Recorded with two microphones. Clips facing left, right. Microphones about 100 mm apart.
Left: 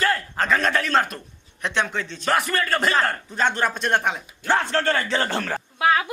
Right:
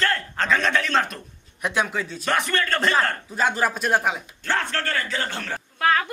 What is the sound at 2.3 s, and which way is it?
A man's voice, 5° left (ahead or behind).